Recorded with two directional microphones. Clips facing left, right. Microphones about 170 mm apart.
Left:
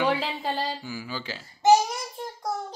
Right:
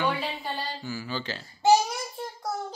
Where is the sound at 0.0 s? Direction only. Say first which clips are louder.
Left 3 dB; 90° left.